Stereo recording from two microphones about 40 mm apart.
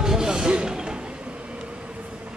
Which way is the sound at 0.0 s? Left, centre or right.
Centre.